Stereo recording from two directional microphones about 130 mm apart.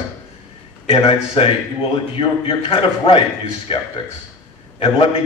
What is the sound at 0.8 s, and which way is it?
A man's voice, 45° left (ahead or behind).